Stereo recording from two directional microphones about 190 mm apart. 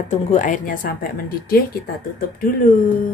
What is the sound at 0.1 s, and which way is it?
Speech, 40° left (ahead or behind).